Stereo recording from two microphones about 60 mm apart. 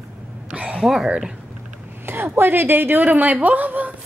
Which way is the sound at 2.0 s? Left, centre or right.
Right.